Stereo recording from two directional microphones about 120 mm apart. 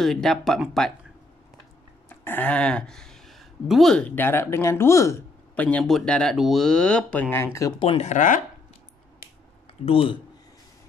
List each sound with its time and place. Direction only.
0.0 s speech: 5° left (ahead or behind)
2.0 s speech: 15° left (ahead or behind)
5.6 s speech: 10° left (ahead or behind)
8.0 s speech: 90° left
9.8 s speech: 50° left (ahead or behind)